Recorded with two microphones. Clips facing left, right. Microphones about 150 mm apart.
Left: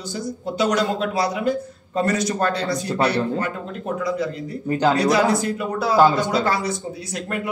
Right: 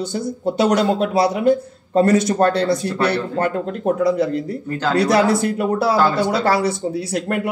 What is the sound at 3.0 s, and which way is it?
Speech, 60° right (ahead or behind).